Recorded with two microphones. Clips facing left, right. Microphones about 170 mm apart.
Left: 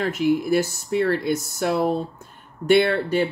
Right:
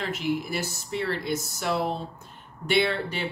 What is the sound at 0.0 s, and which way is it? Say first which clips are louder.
Speech: left 7 dB; 50° left (ahead or behind).